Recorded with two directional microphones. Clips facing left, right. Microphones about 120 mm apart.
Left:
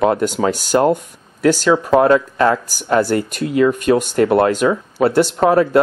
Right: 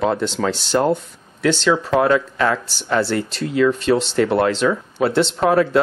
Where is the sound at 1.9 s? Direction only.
40° left (ahead or behind).